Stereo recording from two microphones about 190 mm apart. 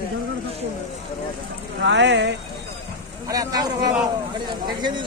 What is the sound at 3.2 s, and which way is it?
Speech, 20° right (ahead or behind).